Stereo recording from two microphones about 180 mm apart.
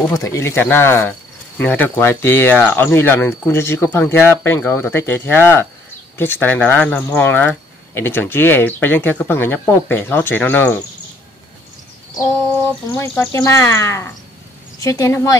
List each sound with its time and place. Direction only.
0.1 s speech: 15° left (ahead or behind)
12.9 s speech: 15° left (ahead or behind)